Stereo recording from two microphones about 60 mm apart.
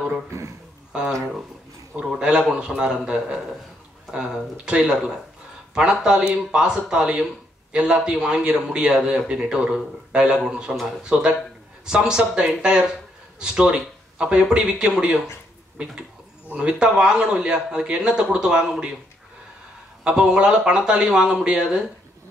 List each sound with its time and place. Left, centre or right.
2.0 s a man's voice: centre
20.0 s a man's voice: centre